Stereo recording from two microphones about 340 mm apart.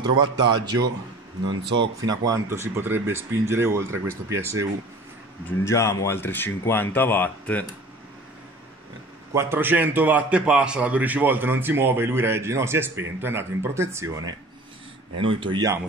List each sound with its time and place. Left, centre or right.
0.1 s a man's voice: right
2.0 s a man's voice: centre
5.6 s speech: centre
9.3 s a man's voice: centre